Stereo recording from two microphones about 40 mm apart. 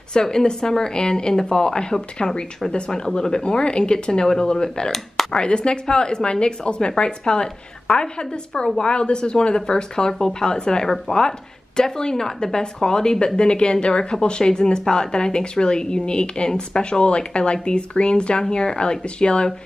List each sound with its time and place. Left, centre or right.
0.1 s a woman's voice: centre